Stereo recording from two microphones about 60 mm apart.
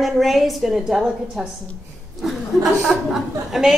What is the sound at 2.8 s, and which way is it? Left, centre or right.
Speech, centre.